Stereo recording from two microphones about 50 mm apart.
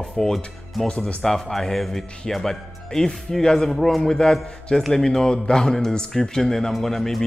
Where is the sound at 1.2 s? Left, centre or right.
Centre.